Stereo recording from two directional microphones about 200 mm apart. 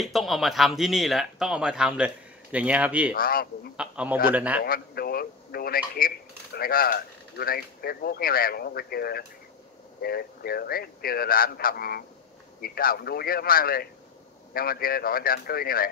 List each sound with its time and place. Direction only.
0.0 s speech: centre (ahead or behind)
3.2 s speech: 45° left (ahead or behind)
3.7 s a man's voice: 5° right (ahead or behind)
4.6 s speech: 50° left (ahead or behind)